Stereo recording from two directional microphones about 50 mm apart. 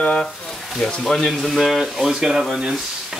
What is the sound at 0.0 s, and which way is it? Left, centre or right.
Speech, left.